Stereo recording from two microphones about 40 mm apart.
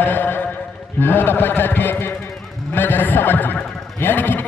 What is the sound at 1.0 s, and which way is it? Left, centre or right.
A man's voice, left.